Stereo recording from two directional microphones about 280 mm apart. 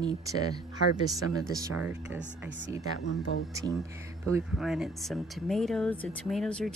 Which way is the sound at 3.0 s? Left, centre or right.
Left.